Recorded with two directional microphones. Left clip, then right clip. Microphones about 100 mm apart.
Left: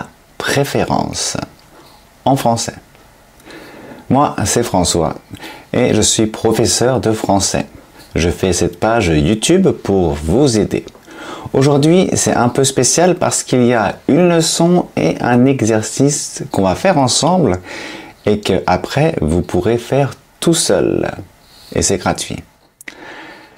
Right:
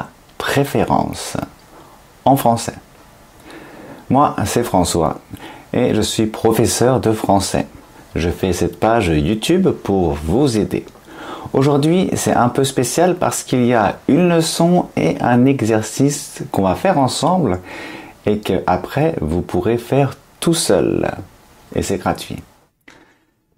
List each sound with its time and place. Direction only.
0.0 s a sound: 15° right (ahead or behind)
0.7 s speech: 20° right (ahead or behind)
4.1 s speech: 5° right (ahead or behind)
6.3 s speech: 15° right (ahead or behind)
8.1 s speech: centre (ahead or behind); by 16.4 s 20° right (ahead or behind)
16.4 s speech: 5° right (ahead or behind)